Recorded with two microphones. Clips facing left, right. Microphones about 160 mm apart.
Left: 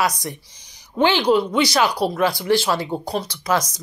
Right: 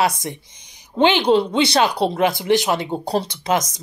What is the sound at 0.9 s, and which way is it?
Speech, 25° right (ahead or behind).